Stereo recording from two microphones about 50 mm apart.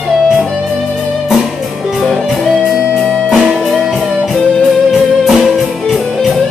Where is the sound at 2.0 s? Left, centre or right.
Centre.